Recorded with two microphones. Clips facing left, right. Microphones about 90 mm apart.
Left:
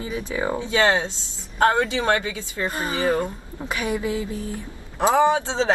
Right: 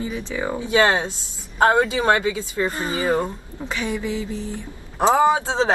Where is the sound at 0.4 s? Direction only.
30° left (ahead or behind).